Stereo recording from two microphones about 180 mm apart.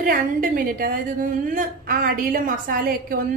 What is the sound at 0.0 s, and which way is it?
A woman's voice, 50° right (ahead or behind).